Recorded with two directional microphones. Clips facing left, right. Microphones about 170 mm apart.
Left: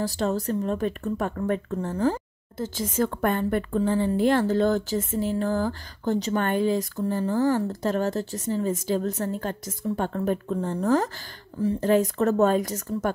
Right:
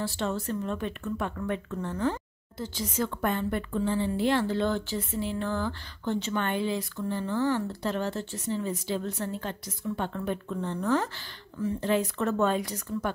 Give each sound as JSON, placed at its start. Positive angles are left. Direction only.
{"t": 0.0, "sound": "speech", "side_deg": 40}
{"t": 2.5, "sound": "a woman's voice", "side_deg": 50}